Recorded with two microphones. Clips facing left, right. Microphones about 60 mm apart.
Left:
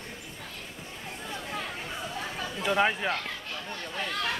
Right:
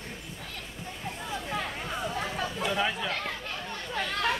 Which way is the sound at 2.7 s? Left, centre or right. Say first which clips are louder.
Left 6 dB; left.